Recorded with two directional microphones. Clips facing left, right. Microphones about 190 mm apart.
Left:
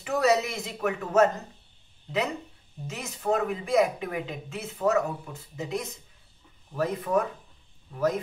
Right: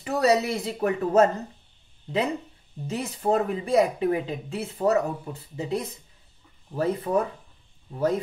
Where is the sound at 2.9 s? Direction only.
35° right (ahead or behind).